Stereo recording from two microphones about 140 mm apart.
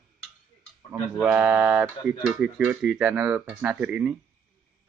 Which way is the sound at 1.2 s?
10° right (ahead or behind).